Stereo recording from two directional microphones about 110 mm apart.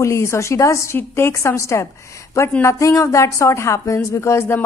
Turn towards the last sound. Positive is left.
turn(degrees=25)  # may be behind; listen again after turning